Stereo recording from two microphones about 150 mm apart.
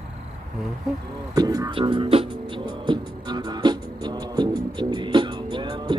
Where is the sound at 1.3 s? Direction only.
25° right (ahead or behind).